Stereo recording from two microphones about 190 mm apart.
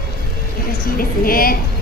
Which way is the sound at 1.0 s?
50° left (ahead or behind).